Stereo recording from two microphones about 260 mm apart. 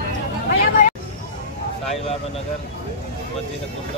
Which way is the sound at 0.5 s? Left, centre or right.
Left.